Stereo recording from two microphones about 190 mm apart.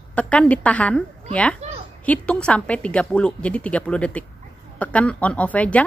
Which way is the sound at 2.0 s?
5° left (ahead or behind).